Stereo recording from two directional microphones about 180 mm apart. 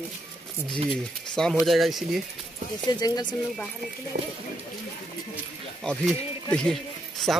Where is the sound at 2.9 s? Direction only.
20° left (ahead or behind).